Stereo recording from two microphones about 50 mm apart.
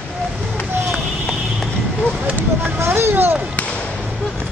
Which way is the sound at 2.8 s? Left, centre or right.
Right.